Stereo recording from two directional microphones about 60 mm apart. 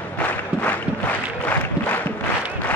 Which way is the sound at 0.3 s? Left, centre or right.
Left.